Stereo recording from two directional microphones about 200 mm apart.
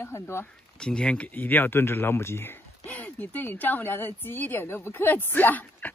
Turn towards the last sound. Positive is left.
turn(degrees=10)  # may be behind; listen again after turning